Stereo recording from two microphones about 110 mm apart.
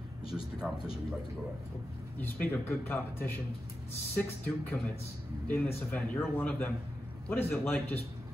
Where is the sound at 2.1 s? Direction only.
15° left (ahead or behind).